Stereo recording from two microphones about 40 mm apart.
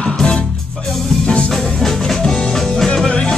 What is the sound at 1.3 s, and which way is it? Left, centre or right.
Music, centre.